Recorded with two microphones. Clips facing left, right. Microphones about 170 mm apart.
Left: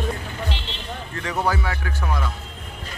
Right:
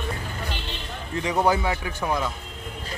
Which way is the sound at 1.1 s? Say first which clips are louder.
Right 3 dB; 15° right (ahead or behind).